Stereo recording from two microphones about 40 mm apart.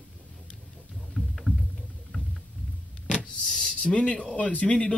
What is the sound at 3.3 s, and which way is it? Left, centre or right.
Power windows, centre.